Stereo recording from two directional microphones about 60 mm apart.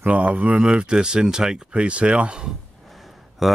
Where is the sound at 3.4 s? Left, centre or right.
Centre.